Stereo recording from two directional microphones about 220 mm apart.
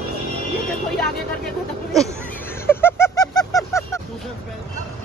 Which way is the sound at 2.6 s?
10° left (ahead or behind).